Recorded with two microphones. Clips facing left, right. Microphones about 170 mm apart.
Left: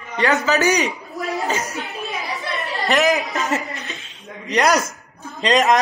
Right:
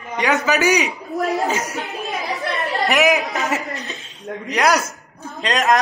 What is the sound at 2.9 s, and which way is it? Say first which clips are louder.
Speech: left 1 dB; centre (ahead or behind).